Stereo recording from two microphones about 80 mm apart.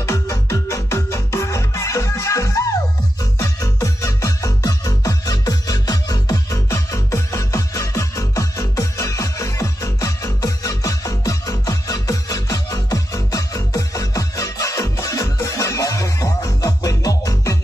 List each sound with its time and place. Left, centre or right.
0.0 s music: left